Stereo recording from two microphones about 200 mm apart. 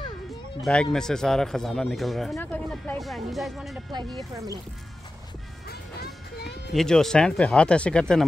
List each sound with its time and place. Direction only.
0.6 s speech: 5° left (ahead or behind)
4.2 s speech: 15° right (ahead or behind)
5.7 s music: 55° left (ahead or behind)
6.7 s speech: centre (ahead or behind)